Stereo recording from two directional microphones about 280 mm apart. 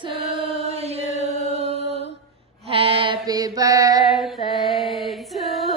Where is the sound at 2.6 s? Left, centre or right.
Centre.